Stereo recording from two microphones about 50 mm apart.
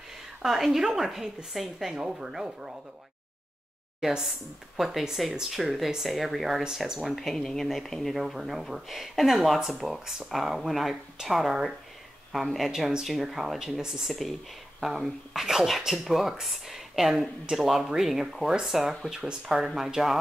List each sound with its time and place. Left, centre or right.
0.4 s a woman's voice: centre
4.7 s a woman's voice: centre